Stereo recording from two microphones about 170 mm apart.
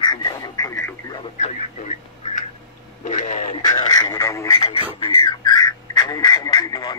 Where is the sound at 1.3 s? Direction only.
45° left (ahead or behind).